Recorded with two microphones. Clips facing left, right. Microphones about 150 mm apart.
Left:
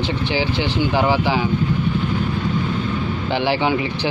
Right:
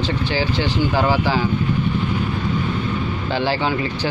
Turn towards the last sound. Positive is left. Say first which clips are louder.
# left 2 dB
turn(degrees=15)  # may be behind; listen again after turning